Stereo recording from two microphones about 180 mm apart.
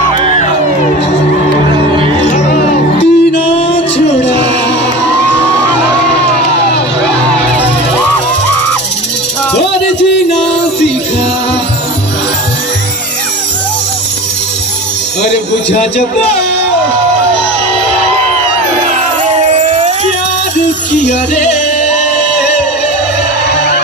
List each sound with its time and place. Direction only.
3.0 s music: 35° left (ahead or behind)
19.5 s a sound: 40° right (ahead or behind)
21.0 s music: 40° left (ahead or behind)